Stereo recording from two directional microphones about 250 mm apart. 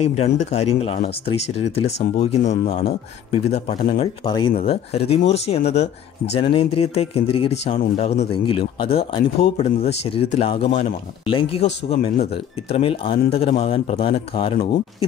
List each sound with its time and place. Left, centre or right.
0.0 s speech: left
2.1 s speech: left